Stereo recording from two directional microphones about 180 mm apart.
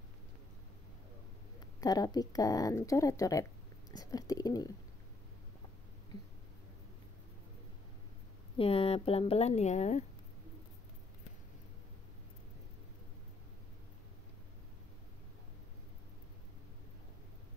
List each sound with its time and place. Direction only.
1.8 s speech: 20° left (ahead or behind)
8.5 s speech: 30° left (ahead or behind)